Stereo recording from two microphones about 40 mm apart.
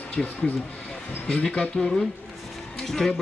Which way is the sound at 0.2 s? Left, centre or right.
Centre.